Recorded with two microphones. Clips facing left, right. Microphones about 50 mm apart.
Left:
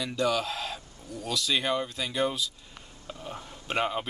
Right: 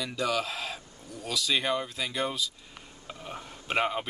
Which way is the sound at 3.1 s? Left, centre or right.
Centre.